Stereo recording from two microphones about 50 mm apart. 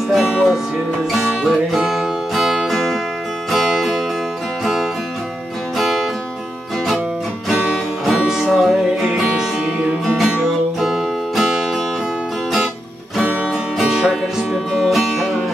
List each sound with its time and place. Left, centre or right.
0.1 s music: centre
5.8 s music: centre
7.7 s music: centre
13.8 s music: centre
14.5 s music: centre